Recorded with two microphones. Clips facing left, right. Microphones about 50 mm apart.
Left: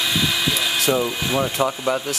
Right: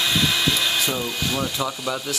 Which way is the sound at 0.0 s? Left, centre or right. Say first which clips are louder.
Even; centre.